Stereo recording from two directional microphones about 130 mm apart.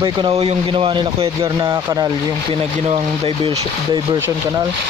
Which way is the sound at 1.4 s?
30° right (ahead or behind).